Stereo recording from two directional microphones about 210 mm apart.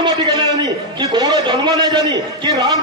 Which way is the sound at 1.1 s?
20° right (ahead or behind).